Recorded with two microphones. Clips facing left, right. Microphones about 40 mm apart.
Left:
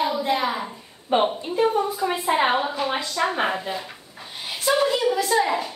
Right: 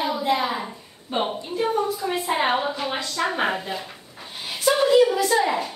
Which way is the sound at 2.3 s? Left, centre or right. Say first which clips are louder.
Left 1 dB; centre.